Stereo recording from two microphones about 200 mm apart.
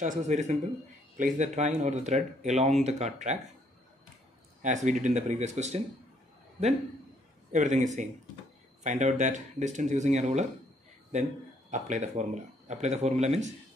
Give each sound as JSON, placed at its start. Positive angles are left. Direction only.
{"t": 0.0, "sound": "speech", "side_deg": -35}
{"t": 4.6, "sound": "speech", "side_deg": -35}
{"t": 7.5, "sound": "speech", "side_deg": -35}
{"t": 11.7, "sound": "speech", "side_deg": -35}